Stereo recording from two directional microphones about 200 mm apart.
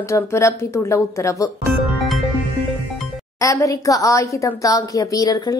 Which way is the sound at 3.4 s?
15° left (ahead or behind).